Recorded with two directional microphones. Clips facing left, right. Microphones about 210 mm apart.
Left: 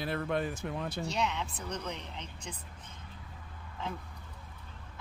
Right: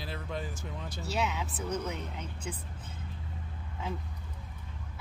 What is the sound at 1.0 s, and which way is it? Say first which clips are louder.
Speech: right 3 dB; 5° right (ahead or behind).